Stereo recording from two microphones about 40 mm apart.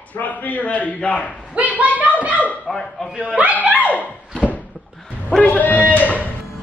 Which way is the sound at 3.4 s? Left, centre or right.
Right.